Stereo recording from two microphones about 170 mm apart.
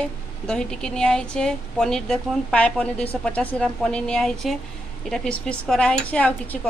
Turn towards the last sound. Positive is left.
turn(degrees=10)  # may be behind; listen again after turning